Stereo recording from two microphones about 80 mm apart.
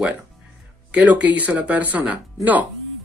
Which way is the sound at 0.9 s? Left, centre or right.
Centre.